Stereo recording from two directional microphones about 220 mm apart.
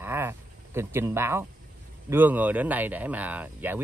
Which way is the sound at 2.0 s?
10° right (ahead or behind).